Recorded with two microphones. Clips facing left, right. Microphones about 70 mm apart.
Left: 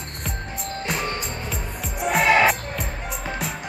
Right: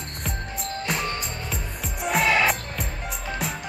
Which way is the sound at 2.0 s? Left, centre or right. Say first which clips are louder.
Left 2 dB; centre.